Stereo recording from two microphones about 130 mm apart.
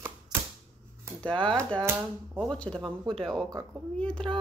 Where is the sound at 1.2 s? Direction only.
5° left (ahead or behind).